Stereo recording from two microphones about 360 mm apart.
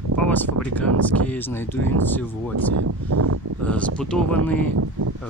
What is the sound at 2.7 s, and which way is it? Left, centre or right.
Speech, right.